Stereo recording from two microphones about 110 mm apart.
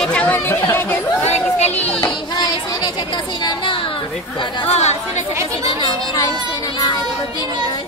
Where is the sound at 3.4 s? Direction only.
50° left (ahead or behind).